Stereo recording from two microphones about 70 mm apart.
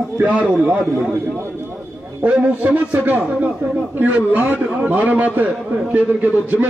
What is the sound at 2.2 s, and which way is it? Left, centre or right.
A man's voice, right.